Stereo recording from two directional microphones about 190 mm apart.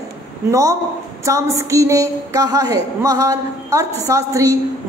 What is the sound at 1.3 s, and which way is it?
A woman's voice, 15° right (ahead or behind).